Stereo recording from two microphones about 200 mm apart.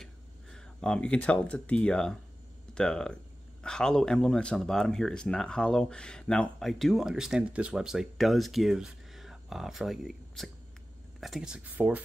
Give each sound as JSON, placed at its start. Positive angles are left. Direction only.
{"t": 0.0, "sound": "speech", "side_deg": 5}